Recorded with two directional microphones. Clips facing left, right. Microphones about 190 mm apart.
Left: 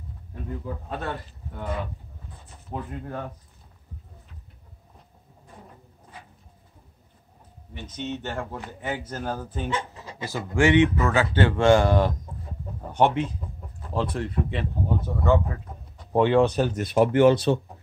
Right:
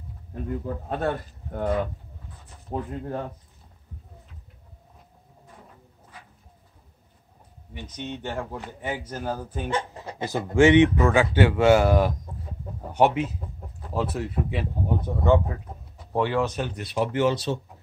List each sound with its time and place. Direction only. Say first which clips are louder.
0.8 s a man's voice: right 8 dB; 50° right (ahead or behind)
2.7 s speech: right 3 dB; 35° right (ahead or behind)
7.9 s speech: left 1 dB; 10° right (ahead or behind)
9.8 s speech: right 3 dB; 55° right (ahead or behind)
10.2 s speech: right 4 dB; 20° right (ahead or behind)
16.1 s speech: left 5 dB; 20° left (ahead or behind); by 17.6 s 55° left (ahead or behind)